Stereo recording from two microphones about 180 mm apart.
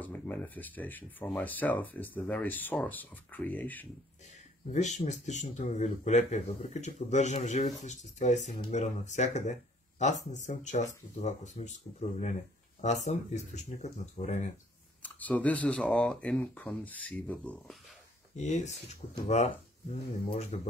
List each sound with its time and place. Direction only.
0.0 s speech: 10° left (ahead or behind)
4.6 s speech: 40° left (ahead or behind)
15.0 s speech: 10° left (ahead or behind)
18.3 s speech: 40° left (ahead or behind)
20.5 s speech: 35° left (ahead or behind)